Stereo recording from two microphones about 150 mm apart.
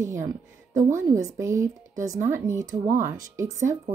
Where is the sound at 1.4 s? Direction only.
20° right (ahead or behind).